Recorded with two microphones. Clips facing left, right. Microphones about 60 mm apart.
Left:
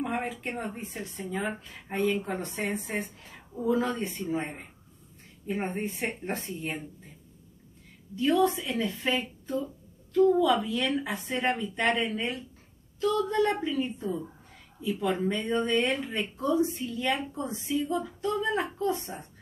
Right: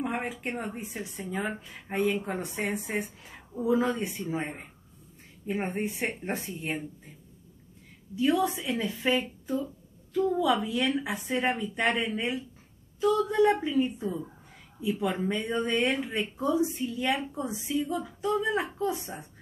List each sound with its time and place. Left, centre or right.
0.0 s speech: centre
8.2 s speech: centre
10.4 s speech: centre